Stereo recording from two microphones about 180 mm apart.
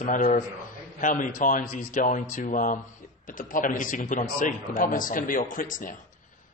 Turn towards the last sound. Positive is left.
turn(degrees=50)  # may be behind; listen again after turning